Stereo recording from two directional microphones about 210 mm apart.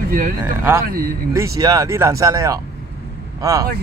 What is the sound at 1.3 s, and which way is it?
Speech, 15° right (ahead or behind).